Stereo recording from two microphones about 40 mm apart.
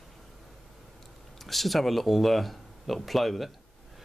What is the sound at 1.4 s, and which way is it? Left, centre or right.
Speech, centre.